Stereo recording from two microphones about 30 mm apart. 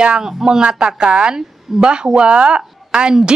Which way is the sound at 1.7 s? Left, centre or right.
Centre.